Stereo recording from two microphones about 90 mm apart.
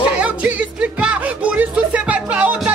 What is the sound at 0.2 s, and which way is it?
Music, 10° right (ahead or behind).